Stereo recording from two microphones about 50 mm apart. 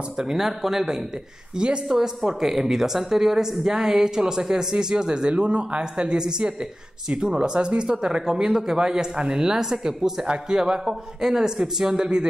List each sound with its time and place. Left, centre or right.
0.2 s speech: centre